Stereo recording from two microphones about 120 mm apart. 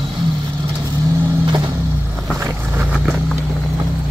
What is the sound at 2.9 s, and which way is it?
Vehicle, 5° right (ahead or behind).